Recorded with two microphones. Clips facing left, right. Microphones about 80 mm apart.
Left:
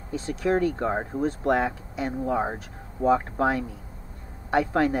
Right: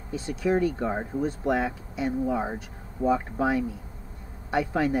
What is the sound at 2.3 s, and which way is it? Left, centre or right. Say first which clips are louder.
Speech: left 2 dB; left.